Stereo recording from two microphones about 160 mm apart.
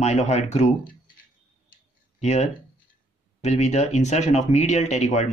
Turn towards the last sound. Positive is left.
turn(degrees=45)  # may be behind; listen again after turning